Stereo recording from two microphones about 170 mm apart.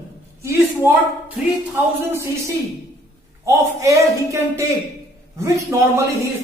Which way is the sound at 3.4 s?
20° right (ahead or behind).